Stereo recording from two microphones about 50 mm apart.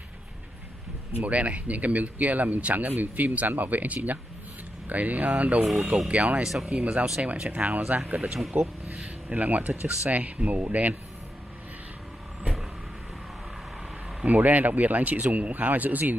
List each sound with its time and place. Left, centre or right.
1.2 s speech: right
6.4 s speech: centre
6.7 s speech: right
8.2 s speech: centre
8.5 s speech: right
14.2 s speech: right